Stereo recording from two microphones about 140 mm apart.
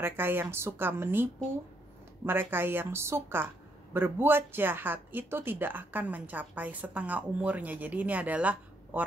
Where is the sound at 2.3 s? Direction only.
15° right (ahead or behind).